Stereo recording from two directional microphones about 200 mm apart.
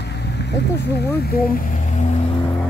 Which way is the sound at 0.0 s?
55° left (ahead or behind).